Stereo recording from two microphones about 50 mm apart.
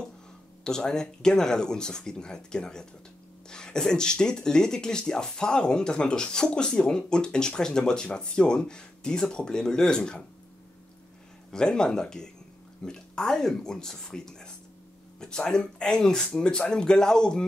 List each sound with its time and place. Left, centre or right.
0.7 s speech: centre
11.5 s speech: centre